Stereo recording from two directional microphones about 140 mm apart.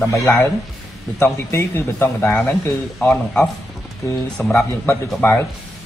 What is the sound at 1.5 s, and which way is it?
Speech, 15° left (ahead or behind).